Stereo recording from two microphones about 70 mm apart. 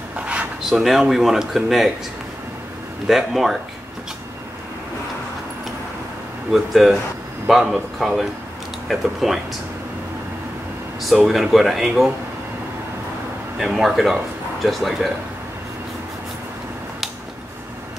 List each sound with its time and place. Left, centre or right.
0.1 s a sound: centre
0.7 s speech: centre
3.1 s speech: centre
6.5 s speech: centre
11.2 s speech: centre
13.7 s speech: centre